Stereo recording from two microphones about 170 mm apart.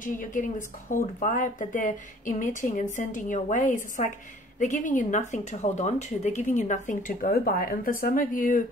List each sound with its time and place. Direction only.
0.0 s speech: 50° left (ahead or behind)